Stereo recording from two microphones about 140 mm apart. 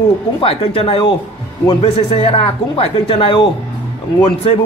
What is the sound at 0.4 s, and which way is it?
Speech, 40° left (ahead or behind).